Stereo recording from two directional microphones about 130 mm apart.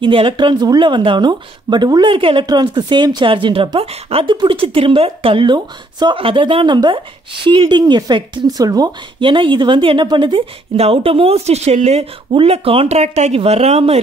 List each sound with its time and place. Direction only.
0.0 s a woman's voice: 40° right (ahead or behind)